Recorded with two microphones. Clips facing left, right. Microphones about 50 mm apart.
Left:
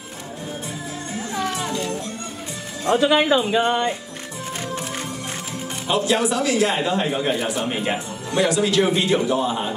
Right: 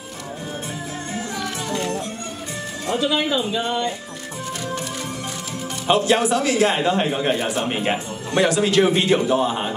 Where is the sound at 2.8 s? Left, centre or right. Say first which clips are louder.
Left 5 dB; left.